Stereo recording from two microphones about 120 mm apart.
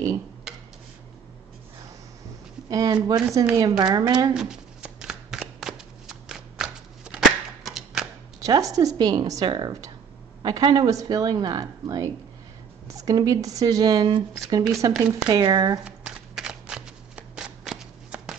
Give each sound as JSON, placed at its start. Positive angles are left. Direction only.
{"t": 2.7, "sound": "speech", "side_deg": -30}
{"t": 4.3, "sound": "shuffling cards", "side_deg": -5}
{"t": 8.4, "sound": "speech", "side_deg": -30}
{"t": 15.8, "sound": "shuffling cards", "side_deg": -5}